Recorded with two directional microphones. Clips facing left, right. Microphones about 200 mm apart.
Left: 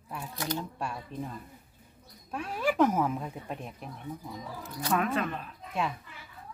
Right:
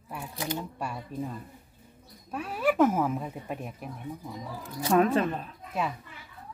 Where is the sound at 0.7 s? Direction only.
5° right (ahead or behind).